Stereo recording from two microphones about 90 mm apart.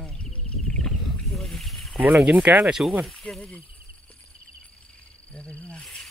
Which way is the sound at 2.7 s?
5° right (ahead or behind).